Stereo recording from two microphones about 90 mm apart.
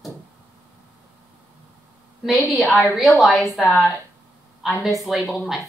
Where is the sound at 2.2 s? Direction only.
Centre (ahead or behind).